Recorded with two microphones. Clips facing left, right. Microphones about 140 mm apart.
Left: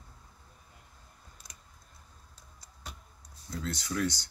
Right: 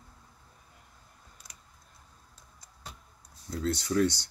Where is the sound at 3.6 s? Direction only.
35° right (ahead or behind).